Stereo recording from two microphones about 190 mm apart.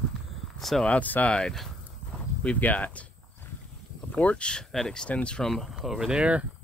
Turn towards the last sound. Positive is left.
turn(degrees=-5)  # may be behind; listen again after turning